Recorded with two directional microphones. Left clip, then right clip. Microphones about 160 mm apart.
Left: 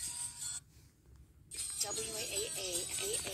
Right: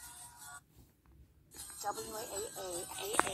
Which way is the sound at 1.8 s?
15° left (ahead or behind).